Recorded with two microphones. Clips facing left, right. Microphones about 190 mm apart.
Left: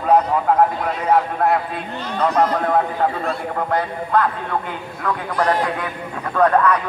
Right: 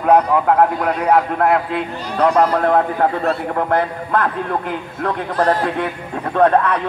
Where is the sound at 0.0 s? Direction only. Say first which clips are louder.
Right 3 dB; 65° right (ahead or behind).